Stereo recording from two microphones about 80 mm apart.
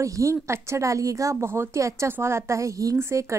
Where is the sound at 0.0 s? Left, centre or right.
Right.